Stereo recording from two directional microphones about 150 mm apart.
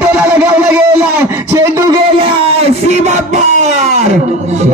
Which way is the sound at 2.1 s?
40° right (ahead or behind).